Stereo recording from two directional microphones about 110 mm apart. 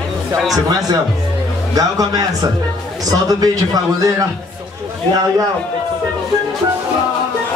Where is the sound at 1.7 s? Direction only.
35° right (ahead or behind).